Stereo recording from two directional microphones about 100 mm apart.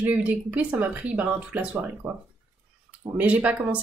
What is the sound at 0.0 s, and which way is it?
Speech, 15° right (ahead or behind).